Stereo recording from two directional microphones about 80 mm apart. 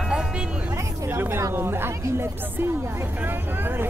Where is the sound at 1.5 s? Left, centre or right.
Right.